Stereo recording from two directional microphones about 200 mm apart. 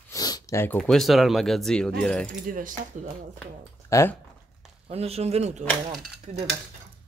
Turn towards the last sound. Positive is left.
turn(degrees=-35)  # may be behind; listen again after turning